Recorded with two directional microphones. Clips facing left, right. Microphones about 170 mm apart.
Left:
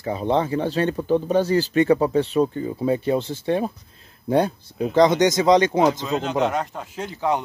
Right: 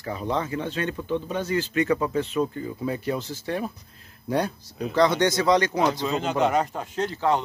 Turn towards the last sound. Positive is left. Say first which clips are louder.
# even
turn(degrees=15)  # may be behind; listen again after turning